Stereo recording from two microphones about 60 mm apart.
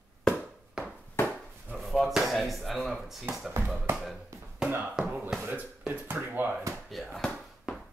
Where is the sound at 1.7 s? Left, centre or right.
Centre.